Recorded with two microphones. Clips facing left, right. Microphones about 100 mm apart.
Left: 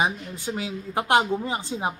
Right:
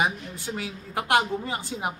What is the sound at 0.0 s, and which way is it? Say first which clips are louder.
A woman's voice: left 1 dB; 20° left (ahead or behind).